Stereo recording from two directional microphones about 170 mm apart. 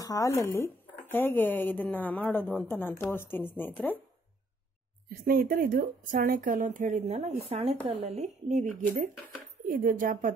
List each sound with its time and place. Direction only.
0.0 s a woman's voice: 20° left (ahead or behind)
5.2 s speech: 60° right (ahead or behind)